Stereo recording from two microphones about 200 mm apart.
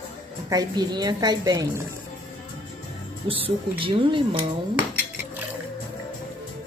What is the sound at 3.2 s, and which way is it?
Speech, 25° right (ahead or behind).